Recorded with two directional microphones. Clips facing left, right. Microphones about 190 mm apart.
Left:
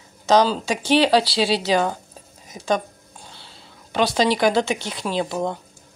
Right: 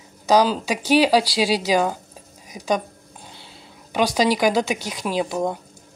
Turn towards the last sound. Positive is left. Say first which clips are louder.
# right 1 dB
turn(degrees=-10)  # may be behind; listen again after turning